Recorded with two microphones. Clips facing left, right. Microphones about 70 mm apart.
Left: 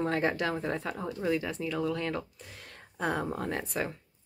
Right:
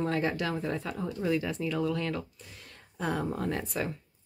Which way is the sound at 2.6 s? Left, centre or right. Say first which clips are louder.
Left 2 dB; left.